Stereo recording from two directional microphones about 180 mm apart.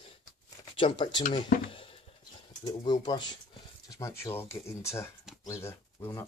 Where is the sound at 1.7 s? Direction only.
30° left (ahead or behind).